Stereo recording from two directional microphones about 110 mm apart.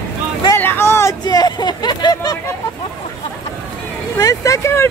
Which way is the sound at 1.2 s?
40° left (ahead or behind).